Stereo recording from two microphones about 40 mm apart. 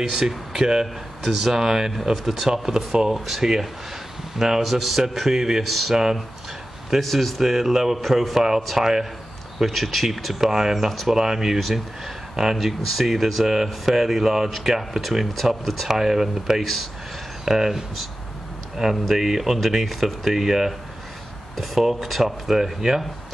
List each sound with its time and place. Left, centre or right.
0.0 s speech: centre
7.0 s speech: centre
8.4 s speech: centre
9.6 s speech: centre
15.9 s speech: centre